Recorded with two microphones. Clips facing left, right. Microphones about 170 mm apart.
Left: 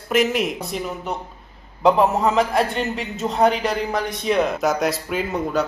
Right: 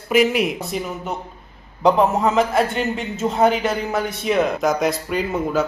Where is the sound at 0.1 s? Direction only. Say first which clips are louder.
Right 2 dB; centre (ahead or behind).